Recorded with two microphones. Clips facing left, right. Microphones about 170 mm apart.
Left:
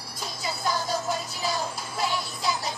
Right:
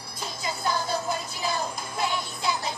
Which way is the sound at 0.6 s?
10° left (ahead or behind).